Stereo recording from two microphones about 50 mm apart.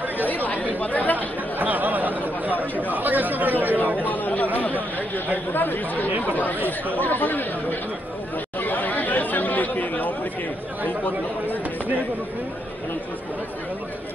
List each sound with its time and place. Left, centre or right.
0.3 s chatter: left
1.1 s chatter: right
4.0 s chatter: left
5.5 s speech: left
6.0 s speech: right
6.3 s speech: left
8.5 s chatter: left